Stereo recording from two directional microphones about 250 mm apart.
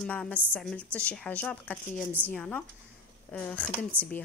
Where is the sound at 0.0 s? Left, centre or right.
Centre.